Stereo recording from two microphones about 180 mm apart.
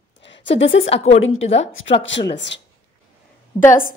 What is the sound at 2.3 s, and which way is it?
Speech, 80° left.